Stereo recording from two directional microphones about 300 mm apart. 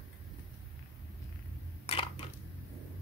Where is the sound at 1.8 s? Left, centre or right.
Centre.